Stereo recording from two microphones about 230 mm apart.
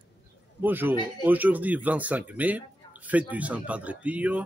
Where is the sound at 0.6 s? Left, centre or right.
Centre.